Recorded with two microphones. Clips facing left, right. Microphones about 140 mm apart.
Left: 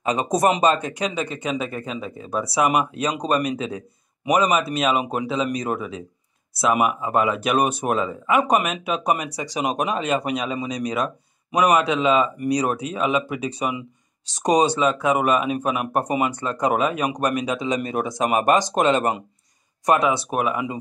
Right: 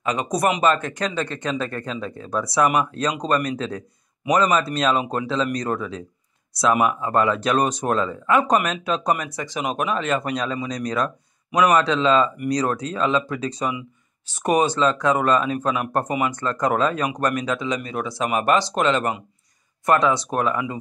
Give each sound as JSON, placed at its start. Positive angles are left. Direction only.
{"t": 0.0, "sound": "speech", "side_deg": 25}
{"t": 20.2, "sound": "speech", "side_deg": 10}